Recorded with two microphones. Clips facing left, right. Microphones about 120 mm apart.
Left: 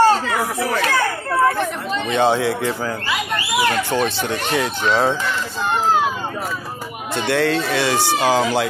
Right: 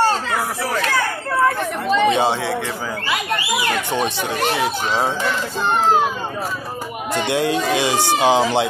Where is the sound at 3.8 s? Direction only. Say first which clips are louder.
Left 1 dB; 20° right (ahead or behind).